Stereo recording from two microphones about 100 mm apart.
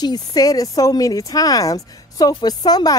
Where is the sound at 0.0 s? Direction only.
40° left (ahead or behind).